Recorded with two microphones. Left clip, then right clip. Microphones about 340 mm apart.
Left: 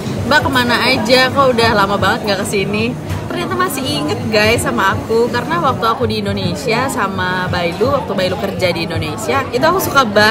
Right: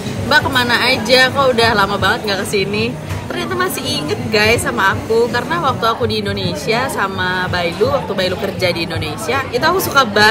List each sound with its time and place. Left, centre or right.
0.3 s speech: centre
4.3 s speech: centre